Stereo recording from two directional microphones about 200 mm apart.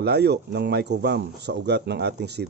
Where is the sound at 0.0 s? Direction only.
55° right (ahead or behind).